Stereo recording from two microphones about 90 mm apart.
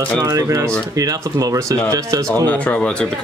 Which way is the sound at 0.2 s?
40° right (ahead or behind).